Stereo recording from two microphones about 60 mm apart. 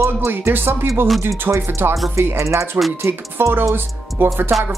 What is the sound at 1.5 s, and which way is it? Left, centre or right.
Speech, right.